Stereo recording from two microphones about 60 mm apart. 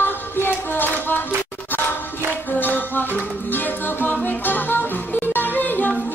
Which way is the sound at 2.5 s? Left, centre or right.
Left.